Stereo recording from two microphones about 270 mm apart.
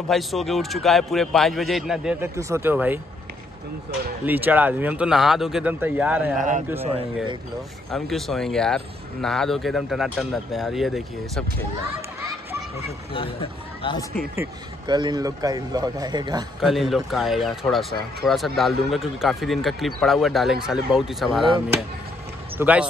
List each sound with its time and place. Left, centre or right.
0.1 s speech: centre
4.3 s speech: centre
7.9 s speech: centre
13.1 s speech: centre
14.1 s speech: centre
16.6 s speech: centre
22.6 s speech: centre